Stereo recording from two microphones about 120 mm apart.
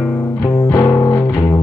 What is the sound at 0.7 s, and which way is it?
Music, 20° left (ahead or behind).